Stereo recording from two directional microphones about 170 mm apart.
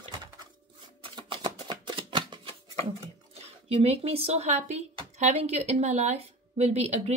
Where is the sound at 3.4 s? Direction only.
35° right (ahead or behind).